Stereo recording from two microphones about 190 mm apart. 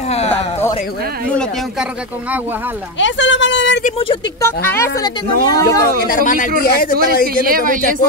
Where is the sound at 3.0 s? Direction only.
75° left (ahead or behind).